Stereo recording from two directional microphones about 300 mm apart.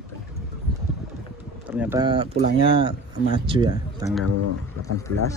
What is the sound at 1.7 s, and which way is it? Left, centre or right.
Speech, centre.